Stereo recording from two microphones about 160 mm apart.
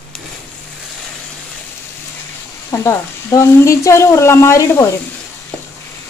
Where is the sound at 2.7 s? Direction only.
20° left (ahead or behind).